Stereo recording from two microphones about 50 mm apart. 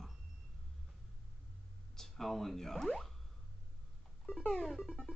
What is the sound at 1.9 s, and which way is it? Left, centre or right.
Speech, centre.